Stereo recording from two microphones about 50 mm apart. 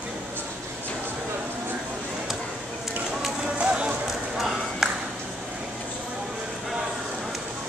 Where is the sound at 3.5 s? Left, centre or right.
Right.